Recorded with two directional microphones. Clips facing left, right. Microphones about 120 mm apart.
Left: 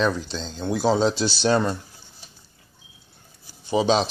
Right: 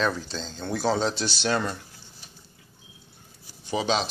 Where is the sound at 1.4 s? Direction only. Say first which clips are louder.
Left 6 dB; 35° left (ahead or behind).